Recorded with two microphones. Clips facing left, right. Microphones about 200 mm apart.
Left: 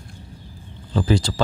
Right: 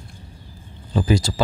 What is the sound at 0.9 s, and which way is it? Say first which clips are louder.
Speech: even; 10° right (ahead or behind).